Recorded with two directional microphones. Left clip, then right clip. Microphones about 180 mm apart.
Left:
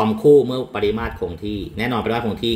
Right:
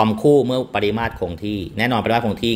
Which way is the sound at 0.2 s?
65° right (ahead or behind).